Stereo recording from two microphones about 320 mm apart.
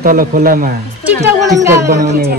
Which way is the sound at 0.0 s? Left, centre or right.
Right.